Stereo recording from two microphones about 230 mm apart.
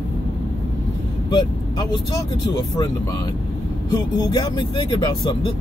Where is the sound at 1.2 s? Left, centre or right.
Centre.